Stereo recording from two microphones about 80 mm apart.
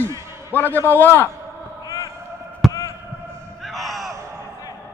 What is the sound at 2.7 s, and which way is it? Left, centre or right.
Basketball bounce, left.